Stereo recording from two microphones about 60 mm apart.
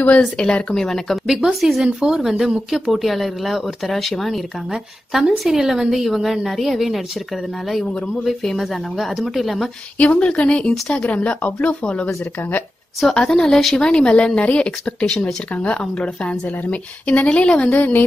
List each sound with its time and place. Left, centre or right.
0.0 s speech: left; by 7.0 s centre
8.2 s speech: centre
9.9 s speech: left; by 13.8 s centre
13.8 s speech: centre